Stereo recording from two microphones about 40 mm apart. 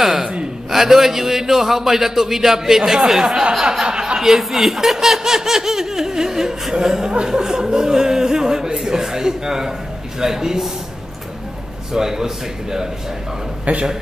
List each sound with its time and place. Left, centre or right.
0.0 s a man's voice: centre
11.9 s speech: centre
13.7 s a man's voice: right